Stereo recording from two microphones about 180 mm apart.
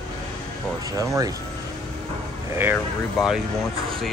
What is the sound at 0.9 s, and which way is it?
Speech, 20° right (ahead or behind).